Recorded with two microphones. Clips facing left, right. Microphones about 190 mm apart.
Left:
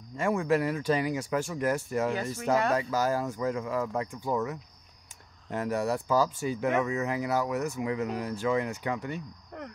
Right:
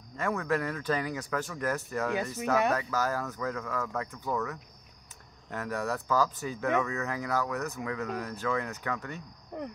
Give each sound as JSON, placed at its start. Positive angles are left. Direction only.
{"t": 0.2, "sound": "speech", "side_deg": 25}